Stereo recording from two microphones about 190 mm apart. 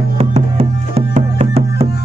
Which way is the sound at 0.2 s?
30° right (ahead or behind).